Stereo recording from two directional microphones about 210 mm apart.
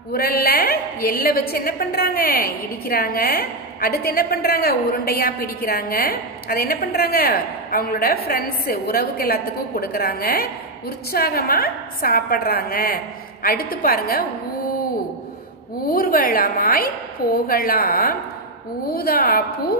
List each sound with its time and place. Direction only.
0.1 s a woman's voice: 45° left (ahead or behind)
15.9 s a woman's voice: 45° left (ahead or behind)